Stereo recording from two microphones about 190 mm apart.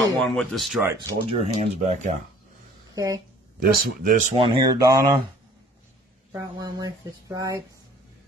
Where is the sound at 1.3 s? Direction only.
35° right (ahead or behind).